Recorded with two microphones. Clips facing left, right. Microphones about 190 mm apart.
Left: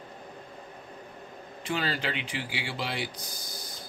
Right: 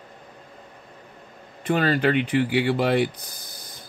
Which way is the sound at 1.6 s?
55° right (ahead or behind).